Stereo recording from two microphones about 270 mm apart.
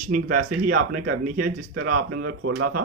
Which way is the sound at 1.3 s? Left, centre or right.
Right.